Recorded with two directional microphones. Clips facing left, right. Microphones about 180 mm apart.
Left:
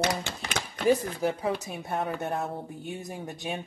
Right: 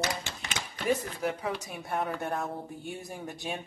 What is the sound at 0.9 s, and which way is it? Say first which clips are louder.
Speech: left 5 dB; 30° left (ahead or behind).